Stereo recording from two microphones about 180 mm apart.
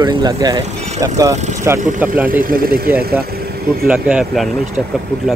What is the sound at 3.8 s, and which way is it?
Speech, 5° right (ahead or behind).